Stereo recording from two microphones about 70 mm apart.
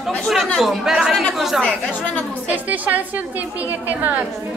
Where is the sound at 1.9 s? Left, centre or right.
Left.